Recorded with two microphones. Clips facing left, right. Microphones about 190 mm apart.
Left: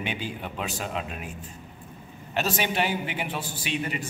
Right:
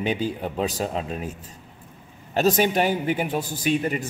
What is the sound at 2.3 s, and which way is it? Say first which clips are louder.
A man's voice: right 7 dB; 40° right (ahead or behind).